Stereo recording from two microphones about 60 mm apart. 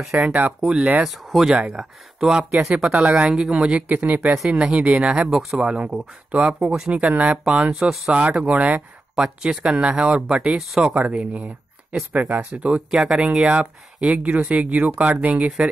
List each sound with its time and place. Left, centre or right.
0.2 s speech: right
1.0 s speech: centre
1.5 s speech: centre
2.8 s speech: centre
12.9 s speech: centre